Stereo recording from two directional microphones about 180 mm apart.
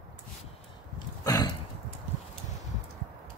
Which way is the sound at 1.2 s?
20° left (ahead or behind).